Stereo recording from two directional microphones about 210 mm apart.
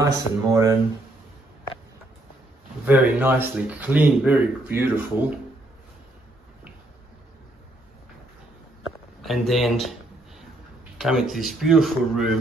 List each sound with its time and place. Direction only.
0.0 s speech: 15° right (ahead or behind)
2.8 s speech: 10° right (ahead or behind)
9.2 s speech: centre (ahead or behind)
11.0 s speech: centre (ahead or behind)